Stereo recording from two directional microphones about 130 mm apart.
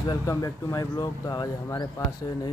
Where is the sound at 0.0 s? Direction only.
30° left (ahead or behind).